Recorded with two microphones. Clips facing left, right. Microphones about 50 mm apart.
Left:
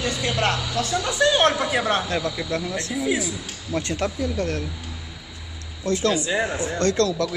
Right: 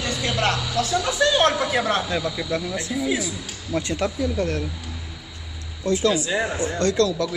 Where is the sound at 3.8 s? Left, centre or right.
Centre.